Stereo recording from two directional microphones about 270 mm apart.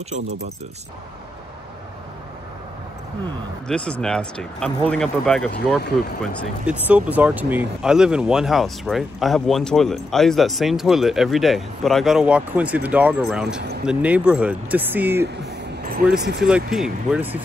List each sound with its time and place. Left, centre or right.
3.6 s speech: centre
13.6 s speech: right
13.8 s speech: centre
15.2 s a sound: right
16.3 s speech: centre